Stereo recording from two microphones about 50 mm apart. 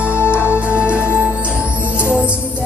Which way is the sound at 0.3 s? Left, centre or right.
Right.